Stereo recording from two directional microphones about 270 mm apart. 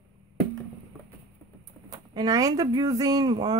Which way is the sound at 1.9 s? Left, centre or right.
Centre.